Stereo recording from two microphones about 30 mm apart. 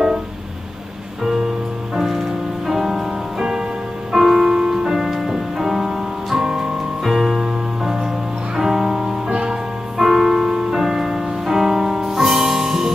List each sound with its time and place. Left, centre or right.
2.0 s music: centre
4.4 s music: right
6.8 s music: centre